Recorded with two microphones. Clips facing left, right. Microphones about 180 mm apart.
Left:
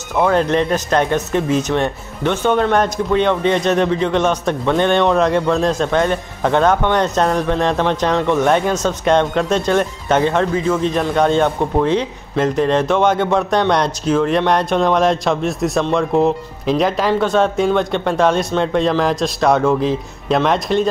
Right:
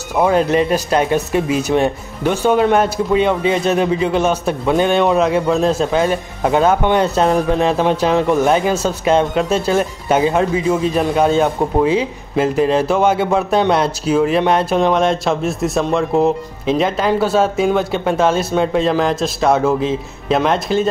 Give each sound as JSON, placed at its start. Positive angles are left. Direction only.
{"t": 0.1, "sound": "speech", "side_deg": -10}